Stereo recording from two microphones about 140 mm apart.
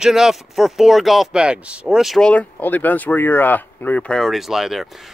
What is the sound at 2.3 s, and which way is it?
Speech, 10° left (ahead or behind).